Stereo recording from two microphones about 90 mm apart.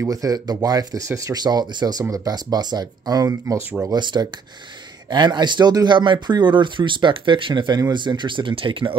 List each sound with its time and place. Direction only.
0.1 s speech: 45° right (ahead or behind)
3.9 s speech: 55° right (ahead or behind); by 8.9 s 70° right (ahead or behind)